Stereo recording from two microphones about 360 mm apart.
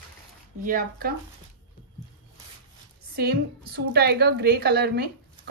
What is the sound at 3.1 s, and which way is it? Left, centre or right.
A woman's voice, right.